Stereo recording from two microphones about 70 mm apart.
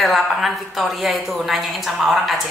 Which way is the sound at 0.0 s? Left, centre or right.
Centre.